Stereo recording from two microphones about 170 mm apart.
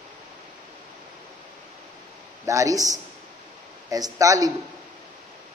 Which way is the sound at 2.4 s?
20° right (ahead or behind).